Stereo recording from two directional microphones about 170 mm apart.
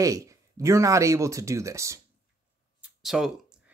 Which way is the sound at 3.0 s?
Centre (ahead or behind).